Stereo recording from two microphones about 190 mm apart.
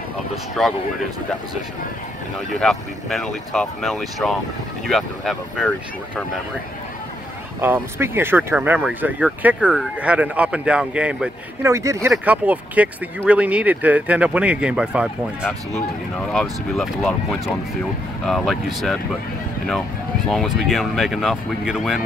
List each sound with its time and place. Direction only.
0.6 s speech: 5° left (ahead or behind)
2.6 s speech: centre (ahead or behind)
7.6 s speech: 10° right (ahead or behind)
20.2 s speech: centre (ahead or behind)